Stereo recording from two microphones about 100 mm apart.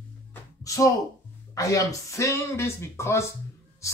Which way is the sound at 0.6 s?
35° left (ahead or behind).